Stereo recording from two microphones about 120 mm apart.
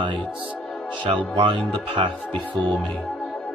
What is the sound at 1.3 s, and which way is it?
Speech, 40° right (ahead or behind).